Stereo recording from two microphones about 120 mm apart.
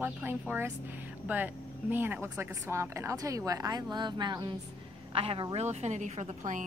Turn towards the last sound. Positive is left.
turn(degrees=-80)